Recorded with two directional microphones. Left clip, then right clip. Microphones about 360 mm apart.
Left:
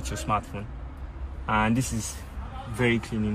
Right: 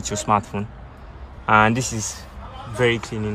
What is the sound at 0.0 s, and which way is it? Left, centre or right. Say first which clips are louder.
A man's voice: right 8 dB; centre.